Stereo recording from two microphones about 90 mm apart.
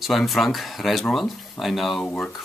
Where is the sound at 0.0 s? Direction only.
Centre (ahead or behind).